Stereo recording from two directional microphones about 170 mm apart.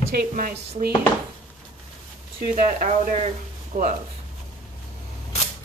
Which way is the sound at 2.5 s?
45° right (ahead or behind).